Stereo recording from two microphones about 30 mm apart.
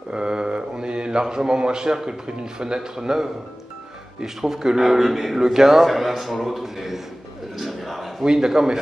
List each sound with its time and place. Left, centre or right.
0.1 s mantra: right
1.2 s a man's voice: right; by 8.1 s centre
8.2 s a man's voice: right